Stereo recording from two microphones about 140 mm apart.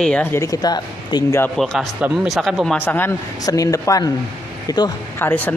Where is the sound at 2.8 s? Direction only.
15° left (ahead or behind).